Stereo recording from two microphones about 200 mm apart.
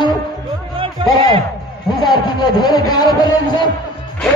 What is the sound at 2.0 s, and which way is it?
Speech, 20° left (ahead or behind).